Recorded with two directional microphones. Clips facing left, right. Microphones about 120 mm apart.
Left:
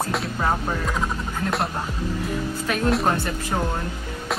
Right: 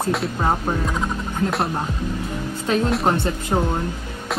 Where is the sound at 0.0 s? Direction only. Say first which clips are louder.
Right 3 dB; centre (ahead or behind).